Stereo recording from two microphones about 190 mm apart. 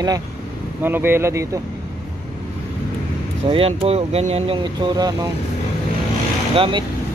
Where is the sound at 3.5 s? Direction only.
30° right (ahead or behind).